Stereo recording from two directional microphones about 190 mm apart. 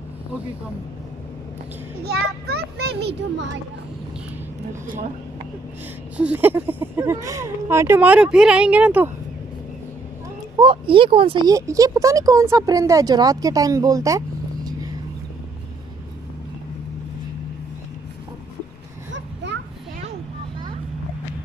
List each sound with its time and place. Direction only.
2.0 s a child's voice: 60° right (ahead or behind)
6.1 s speech: 10° right (ahead or behind)
10.6 s speech: 25° right (ahead or behind)
19.1 s a sound: 65° right (ahead or behind)